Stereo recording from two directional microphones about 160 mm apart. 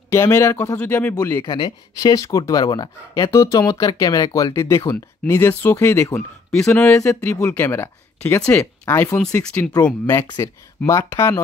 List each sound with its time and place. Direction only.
0.1 s speech: 15° left (ahead or behind)
1.4 s speech: 30° left (ahead or behind)
6.5 s speech: 5° left (ahead or behind)
10.2 s speech: 25° left (ahead or behind)